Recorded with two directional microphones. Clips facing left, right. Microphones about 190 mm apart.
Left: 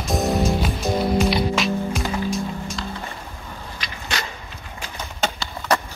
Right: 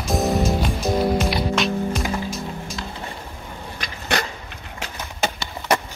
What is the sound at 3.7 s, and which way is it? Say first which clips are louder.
Dog: right 6 dB; 55° right (ahead or behind).